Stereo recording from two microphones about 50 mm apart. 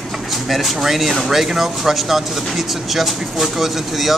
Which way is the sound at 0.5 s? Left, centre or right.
Centre.